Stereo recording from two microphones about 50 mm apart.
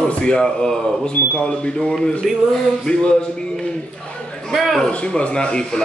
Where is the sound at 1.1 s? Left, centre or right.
Left.